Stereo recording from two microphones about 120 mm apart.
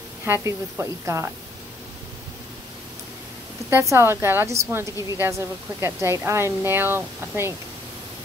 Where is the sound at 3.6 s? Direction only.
20° right (ahead or behind).